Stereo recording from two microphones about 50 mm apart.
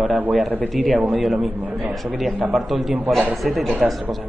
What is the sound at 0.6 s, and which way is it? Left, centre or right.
Speech, centre.